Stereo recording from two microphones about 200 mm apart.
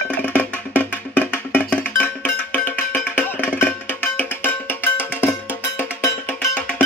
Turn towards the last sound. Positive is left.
turn(degrees=10)  # may be behind; listen again after turning